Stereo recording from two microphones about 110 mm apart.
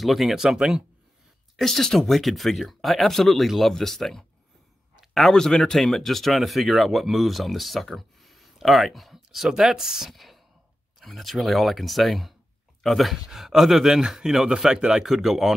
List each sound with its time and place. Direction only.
0.0 s speech: centre (ahead or behind)